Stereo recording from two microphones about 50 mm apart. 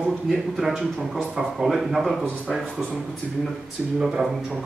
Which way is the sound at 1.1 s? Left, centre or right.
Centre.